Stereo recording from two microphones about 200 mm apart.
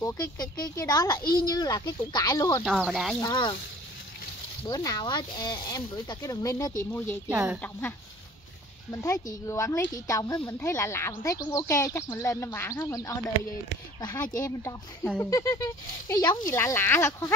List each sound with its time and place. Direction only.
0.0 s speech: 20° left (ahead or behind)
2.6 s speech: centre (ahead or behind)
3.2 s speech: 20° left (ahead or behind)
4.6 s speech: 20° left (ahead or behind)
7.2 s speech: 10° right (ahead or behind)
9.0 s speech: 15° left (ahead or behind)
14.4 s speech: 15° left (ahead or behind)